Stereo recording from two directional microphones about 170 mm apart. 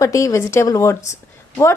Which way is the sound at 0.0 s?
20° left (ahead or behind).